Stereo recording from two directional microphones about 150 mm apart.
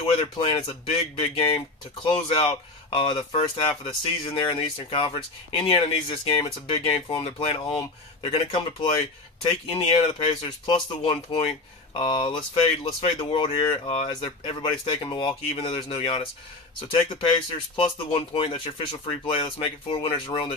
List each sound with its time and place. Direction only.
0.0 s speech: 35° left (ahead or behind)
18.3 s speech: 35° left (ahead or behind)